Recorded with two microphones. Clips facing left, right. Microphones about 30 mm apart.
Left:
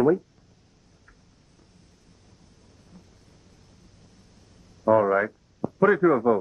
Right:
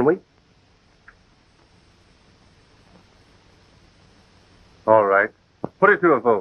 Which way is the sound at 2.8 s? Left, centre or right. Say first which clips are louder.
Even; right.